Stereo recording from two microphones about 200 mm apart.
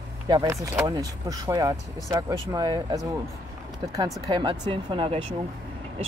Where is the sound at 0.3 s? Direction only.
15° right (ahead or behind).